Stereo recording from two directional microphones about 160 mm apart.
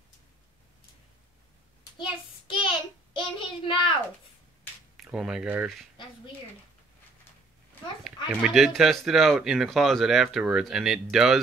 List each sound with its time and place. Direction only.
2.6 s child singing: 30° left (ahead or behind)
4.9 s speech: centre (ahead or behind)
8.0 s speech: 5° right (ahead or behind)